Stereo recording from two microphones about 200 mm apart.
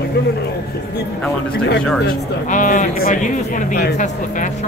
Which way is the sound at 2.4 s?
40° left (ahead or behind).